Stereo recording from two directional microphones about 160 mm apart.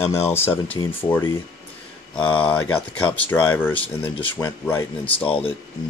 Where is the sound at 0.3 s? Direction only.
15° left (ahead or behind).